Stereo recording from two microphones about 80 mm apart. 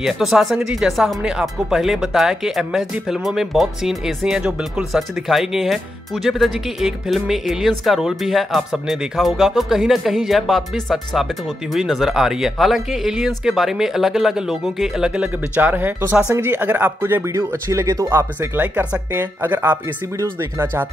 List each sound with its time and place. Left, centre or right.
0.0 s speech: centre; by 17.2 s right
17.3 s speech: right